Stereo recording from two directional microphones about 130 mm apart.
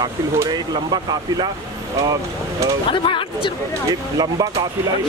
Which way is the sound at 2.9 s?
40° left (ahead or behind).